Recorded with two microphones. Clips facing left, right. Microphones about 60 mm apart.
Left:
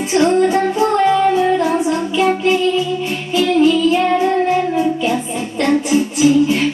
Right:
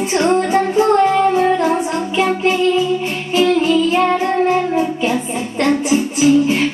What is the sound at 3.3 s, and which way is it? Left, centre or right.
Music, right.